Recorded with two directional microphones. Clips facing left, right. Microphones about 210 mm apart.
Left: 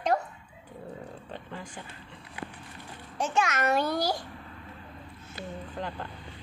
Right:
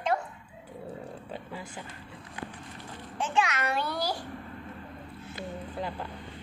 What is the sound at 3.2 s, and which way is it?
A child's voice, 45° left (ahead or behind).